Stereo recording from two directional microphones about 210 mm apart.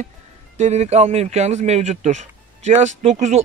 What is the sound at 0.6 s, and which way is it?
Speech, 30° right (ahead or behind).